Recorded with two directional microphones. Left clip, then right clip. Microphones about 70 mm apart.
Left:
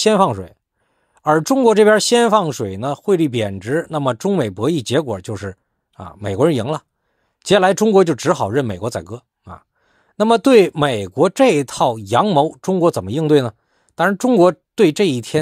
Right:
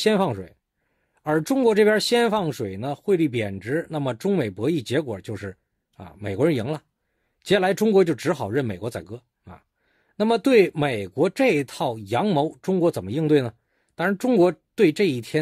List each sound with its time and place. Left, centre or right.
0.0 s speech: left